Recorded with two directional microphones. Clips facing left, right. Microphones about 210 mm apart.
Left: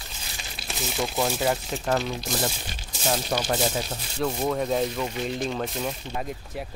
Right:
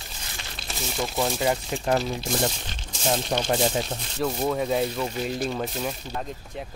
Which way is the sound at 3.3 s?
25° right (ahead or behind).